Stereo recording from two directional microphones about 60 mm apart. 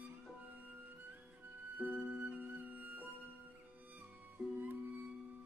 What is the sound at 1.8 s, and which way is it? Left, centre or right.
Music, right.